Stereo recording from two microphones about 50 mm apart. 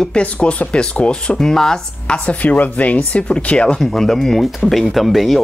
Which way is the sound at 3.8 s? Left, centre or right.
Centre.